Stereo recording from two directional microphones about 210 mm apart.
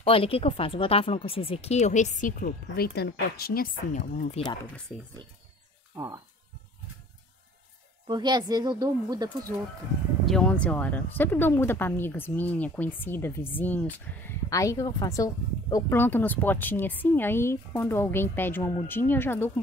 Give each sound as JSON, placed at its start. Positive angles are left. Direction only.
{"t": 0.0, "sound": "speech", "side_deg": 25}
{"t": 4.0, "sound": "speech", "side_deg": 35}
{"t": 8.1, "sound": "speech", "side_deg": -20}
{"t": 10.2, "sound": "speech", "side_deg": 5}